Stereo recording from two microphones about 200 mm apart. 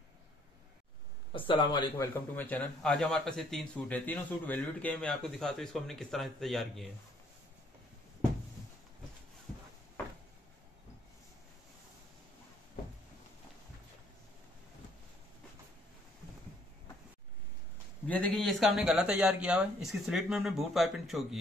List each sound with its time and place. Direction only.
1.3 s speech: 25° left (ahead or behind)
2.0 s speech: 10° left (ahead or behind)
18.0 s speech: 5° left (ahead or behind)